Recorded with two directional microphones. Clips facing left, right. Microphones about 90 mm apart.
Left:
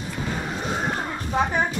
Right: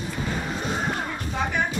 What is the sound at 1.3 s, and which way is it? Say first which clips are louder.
Speech: left 5 dB; 40° left (ahead or behind).